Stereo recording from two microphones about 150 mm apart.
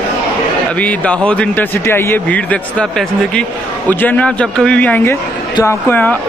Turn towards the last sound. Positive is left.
turn(degrees=10)  # may be behind; listen again after turning